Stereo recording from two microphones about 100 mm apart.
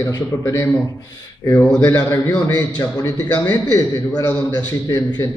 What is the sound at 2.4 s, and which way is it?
A man's voice, 40° left (ahead or behind).